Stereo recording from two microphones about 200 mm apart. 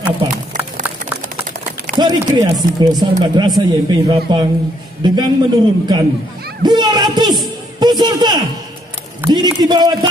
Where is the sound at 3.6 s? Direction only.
20° right (ahead or behind).